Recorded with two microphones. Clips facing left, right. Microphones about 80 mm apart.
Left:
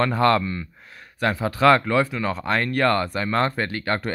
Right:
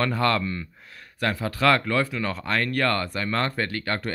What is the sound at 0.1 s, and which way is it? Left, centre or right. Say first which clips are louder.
Speech: left 4 dB; left.